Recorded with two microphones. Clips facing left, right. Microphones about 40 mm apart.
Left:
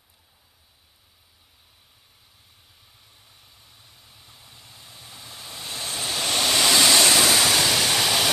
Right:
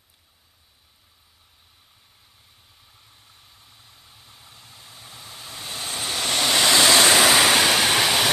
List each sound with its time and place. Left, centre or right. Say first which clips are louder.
3.3 s vehicle: right 1 dB; centre
7.0 s waves: right 3 dB; right
7.3 s train: right 3 dB; right